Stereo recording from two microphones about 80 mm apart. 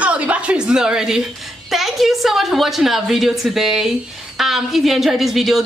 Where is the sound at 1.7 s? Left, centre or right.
Centre.